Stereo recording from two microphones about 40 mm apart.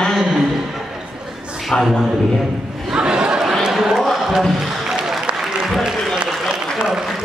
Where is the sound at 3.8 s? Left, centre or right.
Centre.